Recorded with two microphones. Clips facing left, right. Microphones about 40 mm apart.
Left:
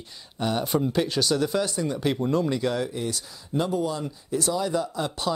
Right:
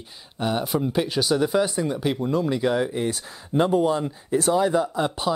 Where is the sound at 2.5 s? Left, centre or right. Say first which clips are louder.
Right 4 dB; centre.